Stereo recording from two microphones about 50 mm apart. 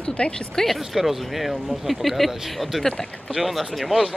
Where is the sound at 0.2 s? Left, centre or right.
Left.